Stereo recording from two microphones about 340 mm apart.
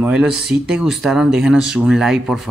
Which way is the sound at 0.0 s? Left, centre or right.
Centre.